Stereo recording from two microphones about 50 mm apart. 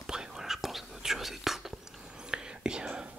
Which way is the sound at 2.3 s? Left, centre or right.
Centre.